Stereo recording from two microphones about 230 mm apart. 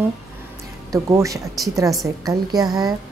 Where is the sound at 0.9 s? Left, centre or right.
Centre.